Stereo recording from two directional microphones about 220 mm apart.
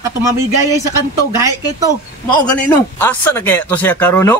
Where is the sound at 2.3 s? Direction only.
5° left (ahead or behind).